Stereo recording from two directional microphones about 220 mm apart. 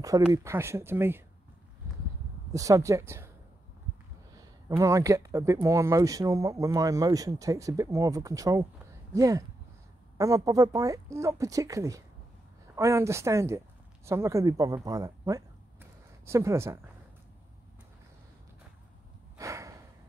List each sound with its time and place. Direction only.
0.3 s speech: 15° right (ahead or behind)
2.5 s speech: 15° right (ahead or behind)
4.6 s speech: 15° right (ahead or behind)
19.3 s snort: 15° right (ahead or behind)